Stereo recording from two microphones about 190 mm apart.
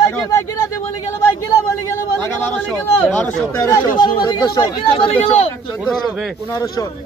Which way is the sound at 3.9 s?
45° left (ahead or behind).